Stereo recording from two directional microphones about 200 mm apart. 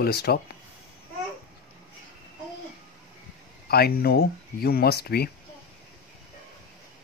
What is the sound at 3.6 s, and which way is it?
Speech, 50° left (ahead or behind).